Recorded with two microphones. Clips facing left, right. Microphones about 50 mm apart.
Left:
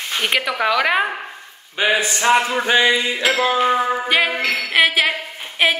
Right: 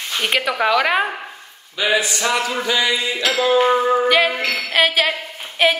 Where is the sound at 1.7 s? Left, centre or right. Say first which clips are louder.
Left 1 dB; left.